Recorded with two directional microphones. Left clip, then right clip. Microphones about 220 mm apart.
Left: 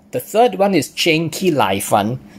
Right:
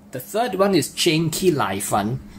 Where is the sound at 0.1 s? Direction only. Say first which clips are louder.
Left 9 dB; 25° left (ahead or behind).